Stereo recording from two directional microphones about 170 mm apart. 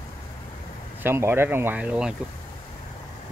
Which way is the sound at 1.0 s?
15° right (ahead or behind).